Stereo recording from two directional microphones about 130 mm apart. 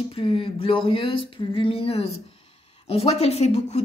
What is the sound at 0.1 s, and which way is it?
Speech, 45° left (ahead or behind).